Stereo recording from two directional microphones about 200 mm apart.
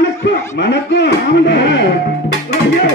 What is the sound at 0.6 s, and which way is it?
Speech, 60° left (ahead or behind).